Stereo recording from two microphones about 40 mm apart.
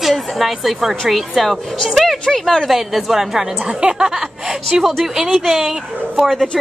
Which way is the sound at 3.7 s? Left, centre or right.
Centre.